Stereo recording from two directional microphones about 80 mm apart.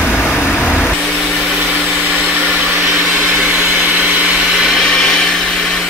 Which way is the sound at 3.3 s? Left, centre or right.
Right.